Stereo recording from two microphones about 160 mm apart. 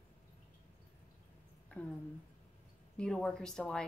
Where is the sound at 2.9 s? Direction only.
5° left (ahead or behind).